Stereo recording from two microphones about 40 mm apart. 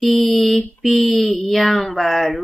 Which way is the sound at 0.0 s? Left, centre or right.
Centre.